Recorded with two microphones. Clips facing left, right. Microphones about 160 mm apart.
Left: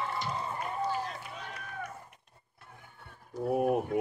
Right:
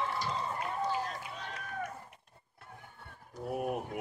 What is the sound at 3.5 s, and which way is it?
Speech, 40° left (ahead or behind).